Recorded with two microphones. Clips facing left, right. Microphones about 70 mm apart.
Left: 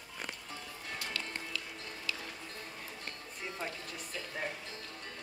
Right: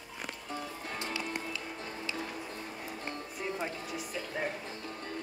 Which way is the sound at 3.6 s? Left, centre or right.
Centre.